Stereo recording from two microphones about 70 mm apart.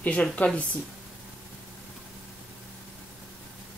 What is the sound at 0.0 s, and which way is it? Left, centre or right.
Speech, centre.